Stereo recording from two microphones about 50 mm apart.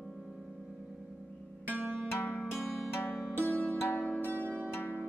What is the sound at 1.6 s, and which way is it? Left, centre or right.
Music, right.